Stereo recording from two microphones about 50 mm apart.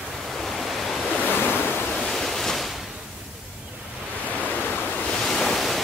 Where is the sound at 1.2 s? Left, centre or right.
Left.